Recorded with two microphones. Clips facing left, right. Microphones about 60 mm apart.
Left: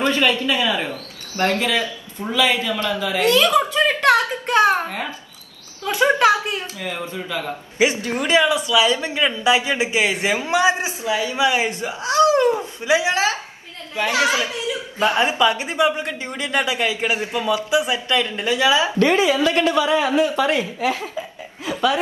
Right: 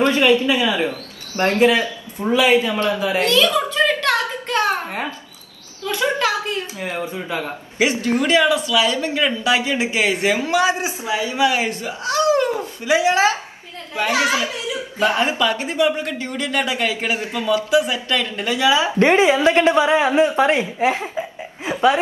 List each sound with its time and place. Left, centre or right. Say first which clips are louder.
0.1 s a woman's voice: right 3 dB; right
3.3 s a sound: left 4 dB; left
5.9 s speech: left 5 dB; left
6.8 s a woman's voice: right 2 dB; right
7.8 s speech: right 1 dB; left
10.8 s a woman's voice: even; right
11.4 s speech: right 1 dB; left
12.4 s a sound: left 2 dB; left
13.1 s a woman's voice: right 4 dB; right
15.0 s speech: left 1 dB; left
18.7 s a woman's voice: right 3 dB; right